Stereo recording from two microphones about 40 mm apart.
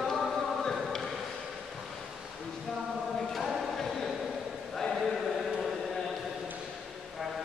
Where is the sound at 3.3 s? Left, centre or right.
Centre.